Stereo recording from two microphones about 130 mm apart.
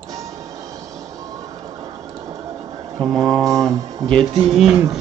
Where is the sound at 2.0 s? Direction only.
25° right (ahead or behind).